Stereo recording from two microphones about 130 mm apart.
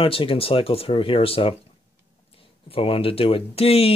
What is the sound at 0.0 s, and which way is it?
Speech, 45° left (ahead or behind).